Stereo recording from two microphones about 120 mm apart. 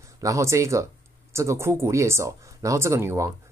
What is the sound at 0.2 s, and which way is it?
Speech, 25° right (ahead or behind).